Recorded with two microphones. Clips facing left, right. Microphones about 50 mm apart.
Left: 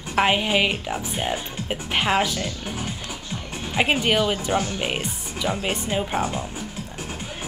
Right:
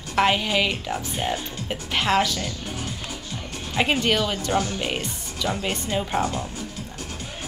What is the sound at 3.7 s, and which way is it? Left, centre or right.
Speech, centre.